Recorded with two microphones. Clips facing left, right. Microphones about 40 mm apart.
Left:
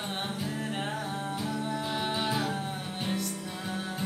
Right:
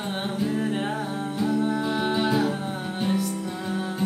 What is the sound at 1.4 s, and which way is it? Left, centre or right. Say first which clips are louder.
Music: right 12 dB; centre.